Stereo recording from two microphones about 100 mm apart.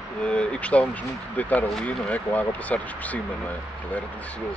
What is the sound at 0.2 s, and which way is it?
Speech, 10° left (ahead or behind).